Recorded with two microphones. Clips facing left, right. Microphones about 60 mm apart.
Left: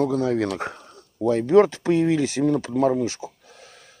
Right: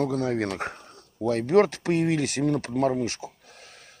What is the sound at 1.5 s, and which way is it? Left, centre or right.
Speech, left.